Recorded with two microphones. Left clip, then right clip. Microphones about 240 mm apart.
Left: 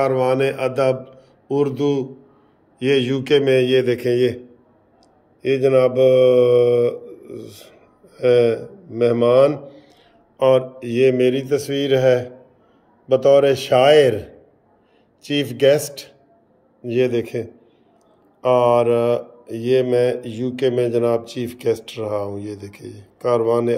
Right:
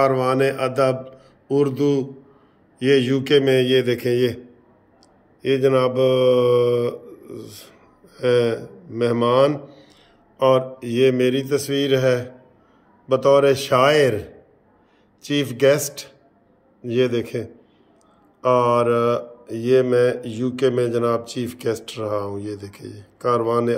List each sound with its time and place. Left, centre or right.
0.0 s speech: centre
5.4 s mantra: centre
10.3 s speech: centre
15.2 s mantra: centre
16.8 s speech: centre
18.4 s mantra: centre